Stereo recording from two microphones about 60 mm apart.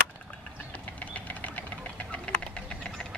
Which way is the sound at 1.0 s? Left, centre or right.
Left.